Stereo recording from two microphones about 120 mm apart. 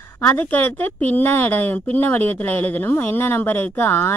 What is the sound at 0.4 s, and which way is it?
A woman's voice, 15° left (ahead or behind).